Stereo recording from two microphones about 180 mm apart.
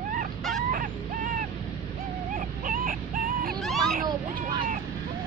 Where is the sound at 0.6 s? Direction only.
50° right (ahead or behind).